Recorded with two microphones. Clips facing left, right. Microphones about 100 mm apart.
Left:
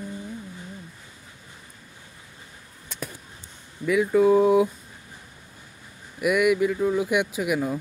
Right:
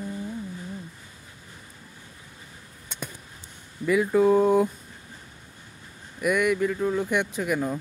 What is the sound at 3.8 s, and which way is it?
Speech, centre (ahead or behind).